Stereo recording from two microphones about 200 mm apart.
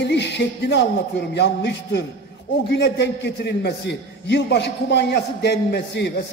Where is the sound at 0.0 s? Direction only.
60° left (ahead or behind).